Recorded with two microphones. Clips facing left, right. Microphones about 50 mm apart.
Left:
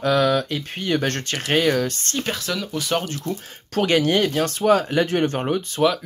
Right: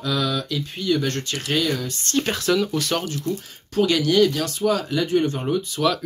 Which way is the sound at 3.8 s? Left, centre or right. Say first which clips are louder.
Right 1 dB; left.